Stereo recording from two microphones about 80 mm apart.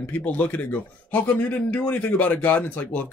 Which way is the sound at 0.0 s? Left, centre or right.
Centre.